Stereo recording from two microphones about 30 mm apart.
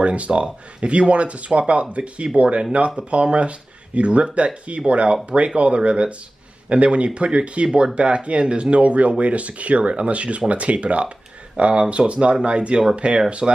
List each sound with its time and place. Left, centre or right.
0.0 s speech: right
13.4 s speech: right